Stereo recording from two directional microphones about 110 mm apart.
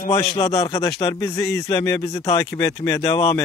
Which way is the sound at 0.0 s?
30° left (ahead or behind).